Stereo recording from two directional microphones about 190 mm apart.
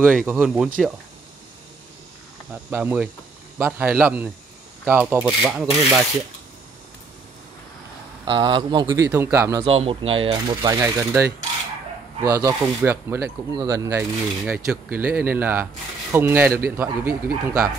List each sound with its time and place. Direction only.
0.0 s speech: centre (ahead or behind)
2.5 s speech: 10° right (ahead or behind)
8.3 s speech: 25° right (ahead or behind)
9.7 s speech: 30° right (ahead or behind); by 17.6 s 10° right (ahead or behind)